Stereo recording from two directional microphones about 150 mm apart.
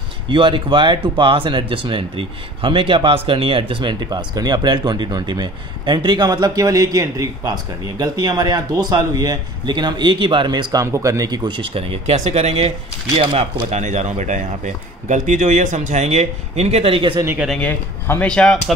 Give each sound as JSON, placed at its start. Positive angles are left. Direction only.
{"t": 0.3, "sound": "speech", "side_deg": -35}
{"t": 17.6, "sound": "speech", "side_deg": 15}